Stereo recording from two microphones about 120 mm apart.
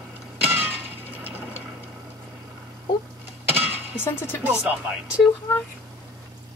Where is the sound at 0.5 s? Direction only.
15° right (ahead or behind).